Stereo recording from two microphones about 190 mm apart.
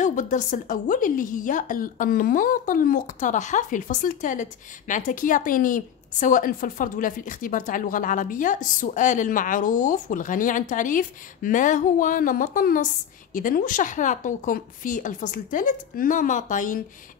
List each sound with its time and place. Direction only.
0.0 s a woman's voice: 40° left (ahead or behind)